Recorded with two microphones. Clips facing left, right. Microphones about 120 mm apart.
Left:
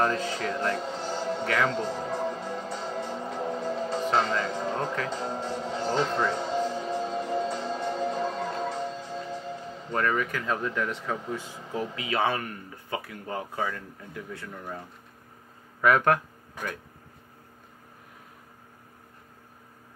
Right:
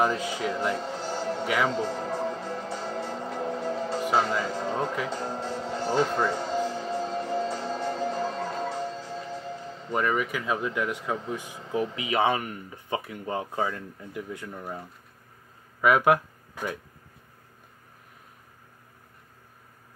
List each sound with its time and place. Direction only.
0.0 s music: 10° right (ahead or behind)
9.8 s speech: 10° right (ahead or behind)
14.6 s speech: 5° right (ahead or behind)